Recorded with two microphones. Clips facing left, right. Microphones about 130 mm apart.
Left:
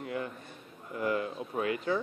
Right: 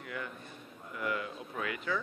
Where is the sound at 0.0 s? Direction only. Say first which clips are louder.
Left 6 dB; 30° left (ahead or behind).